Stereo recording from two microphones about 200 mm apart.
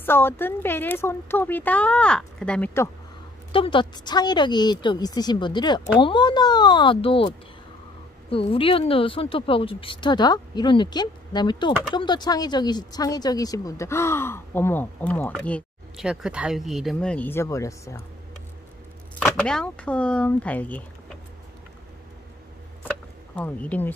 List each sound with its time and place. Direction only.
0.0 s speech: 10° left (ahead or behind)
3.5 s speech: 25° left (ahead or behind)
19.1 s speech: 5° left (ahead or behind)
23.3 s speech: 5° left (ahead or behind)